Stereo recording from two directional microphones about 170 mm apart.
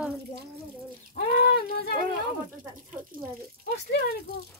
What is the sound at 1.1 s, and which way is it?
Speech, 70° left (ahead or behind).